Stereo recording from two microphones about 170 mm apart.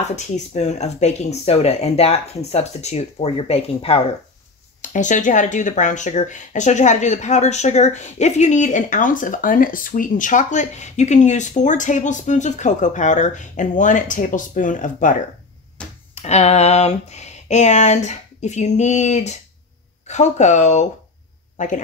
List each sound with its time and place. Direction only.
0.0 s speech: 40° left (ahead or behind)
4.9 s speech: 45° left (ahead or behind)
16.2 s speech: 40° left (ahead or behind)